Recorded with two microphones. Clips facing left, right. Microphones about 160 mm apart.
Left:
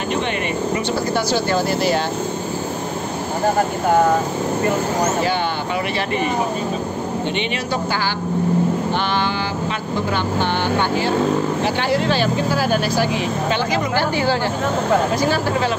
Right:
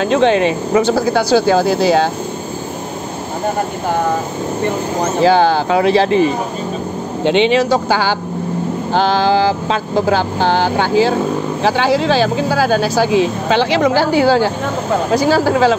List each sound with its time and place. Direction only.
0.1 s speech: 90° right
5.2 s speech: 90° right
7.2 s speech: 90° right